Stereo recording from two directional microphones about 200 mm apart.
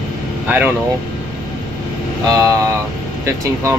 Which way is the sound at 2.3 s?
15° right (ahead or behind).